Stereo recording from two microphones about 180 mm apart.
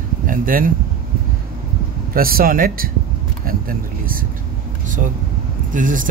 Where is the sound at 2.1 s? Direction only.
55° right (ahead or behind).